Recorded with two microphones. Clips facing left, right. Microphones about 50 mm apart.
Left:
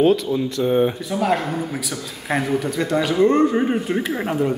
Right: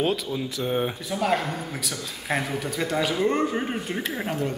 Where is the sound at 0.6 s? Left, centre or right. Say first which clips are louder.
Left 8 dB; centre.